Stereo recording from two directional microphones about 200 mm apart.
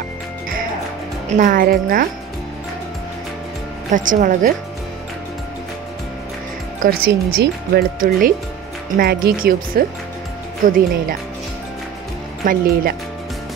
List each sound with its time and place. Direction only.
1.3 s speech: 40° right (ahead or behind)
3.9 s speech: 40° right (ahead or behind)
6.8 s speech: 50° right (ahead or behind)
12.4 s speech: 40° right (ahead or behind)